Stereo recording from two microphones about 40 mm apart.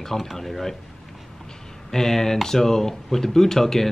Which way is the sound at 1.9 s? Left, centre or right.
Centre.